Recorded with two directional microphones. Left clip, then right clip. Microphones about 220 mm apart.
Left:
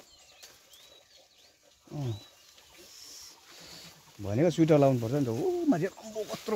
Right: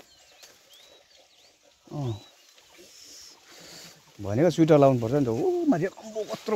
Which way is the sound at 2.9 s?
Centre (ahead or behind).